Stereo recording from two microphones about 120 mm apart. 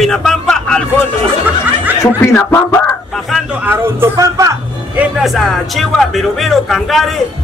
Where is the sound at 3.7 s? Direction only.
20° right (ahead or behind).